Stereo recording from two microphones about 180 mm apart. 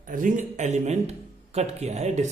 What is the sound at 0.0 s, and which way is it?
A man's voice, 45° right (ahead or behind).